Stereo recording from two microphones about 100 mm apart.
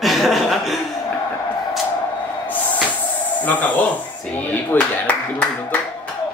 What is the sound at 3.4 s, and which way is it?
A man's voice, 15° left (ahead or behind).